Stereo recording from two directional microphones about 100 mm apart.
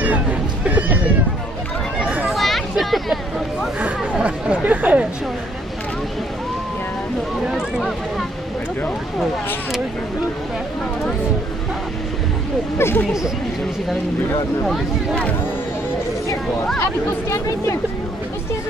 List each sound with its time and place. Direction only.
0.0 s a sound: 15° right (ahead or behind)
2.3 s a sound: centre (ahead or behind)
2.7 s vehicle: centre (ahead or behind)
4.2 s chatter: 15° right (ahead or behind)
12.7 s speech: 25° left (ahead or behind)
16.7 s speech: 25° left (ahead or behind)